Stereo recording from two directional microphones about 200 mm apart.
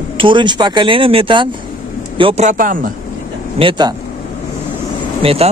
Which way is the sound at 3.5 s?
25° right (ahead or behind).